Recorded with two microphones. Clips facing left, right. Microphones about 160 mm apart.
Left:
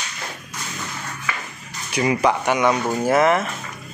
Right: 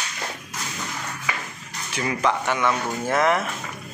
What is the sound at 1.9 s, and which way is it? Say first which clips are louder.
Speech: left 5 dB; 15° left (ahead or behind).